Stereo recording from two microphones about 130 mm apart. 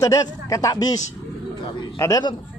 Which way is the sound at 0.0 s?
25° left (ahead or behind).